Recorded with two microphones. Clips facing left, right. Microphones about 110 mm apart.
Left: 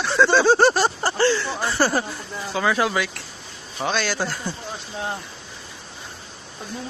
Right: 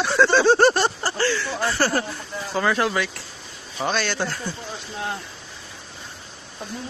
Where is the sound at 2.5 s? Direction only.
5° left (ahead or behind).